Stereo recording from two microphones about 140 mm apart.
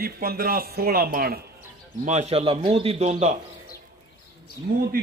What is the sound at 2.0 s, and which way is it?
A man's voice, 55° right (ahead or behind).